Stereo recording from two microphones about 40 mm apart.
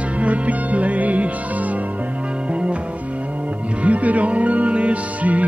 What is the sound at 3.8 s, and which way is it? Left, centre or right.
Music, right.